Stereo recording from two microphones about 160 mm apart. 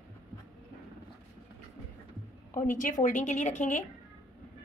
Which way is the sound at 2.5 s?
55° left (ahead or behind).